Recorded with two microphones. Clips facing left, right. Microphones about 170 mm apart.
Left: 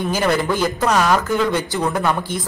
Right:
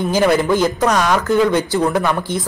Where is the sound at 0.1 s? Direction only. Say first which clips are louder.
Right 5 dB; 15° right (ahead or behind).